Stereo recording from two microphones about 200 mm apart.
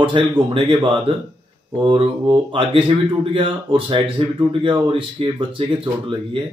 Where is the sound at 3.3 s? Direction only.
25° right (ahead or behind).